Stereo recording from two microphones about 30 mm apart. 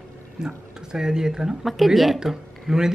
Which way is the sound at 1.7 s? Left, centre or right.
Centre.